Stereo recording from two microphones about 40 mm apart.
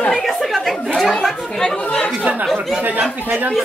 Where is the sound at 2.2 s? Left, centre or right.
Right.